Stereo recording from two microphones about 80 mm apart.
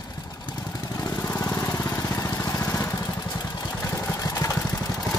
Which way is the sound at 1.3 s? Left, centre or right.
Centre.